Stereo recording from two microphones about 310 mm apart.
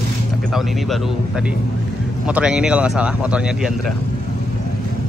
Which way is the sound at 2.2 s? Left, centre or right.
Centre.